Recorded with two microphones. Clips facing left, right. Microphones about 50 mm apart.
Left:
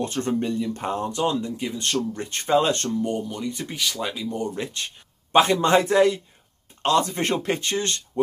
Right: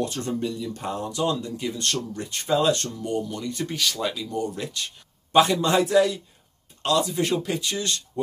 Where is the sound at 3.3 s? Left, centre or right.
Centre.